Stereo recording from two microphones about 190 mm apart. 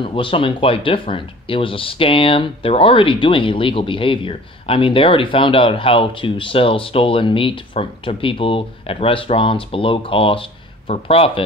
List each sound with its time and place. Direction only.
0.0 s speech: 25° left (ahead or behind)